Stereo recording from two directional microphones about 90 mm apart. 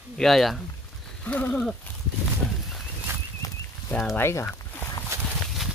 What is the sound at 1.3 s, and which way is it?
Speech, 15° left (ahead or behind).